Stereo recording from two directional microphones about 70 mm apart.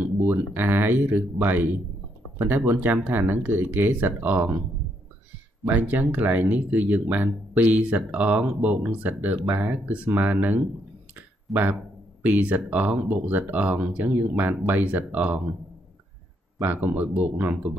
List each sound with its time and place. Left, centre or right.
0.2 s speech: right
5.7 s speech: right
11.1 s clicking: right
12.2 s speech: right
16.6 s speech: right